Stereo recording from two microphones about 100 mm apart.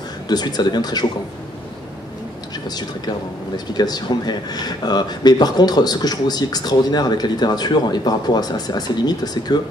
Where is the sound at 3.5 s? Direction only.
45° left (ahead or behind).